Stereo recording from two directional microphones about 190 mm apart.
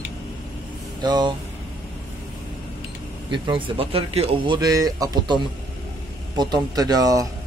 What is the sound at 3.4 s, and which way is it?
Speech, 25° right (ahead or behind).